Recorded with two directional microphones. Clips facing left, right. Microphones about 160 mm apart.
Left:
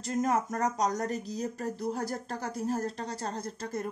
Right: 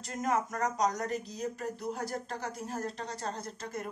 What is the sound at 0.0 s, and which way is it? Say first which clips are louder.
Speech: left 3 dB; 35° left (ahead or behind).